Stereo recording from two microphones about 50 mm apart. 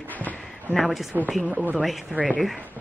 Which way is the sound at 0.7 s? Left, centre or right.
Centre.